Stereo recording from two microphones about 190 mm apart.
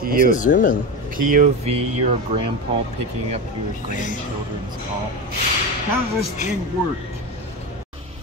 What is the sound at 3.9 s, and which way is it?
Speech, 45° left (ahead or behind).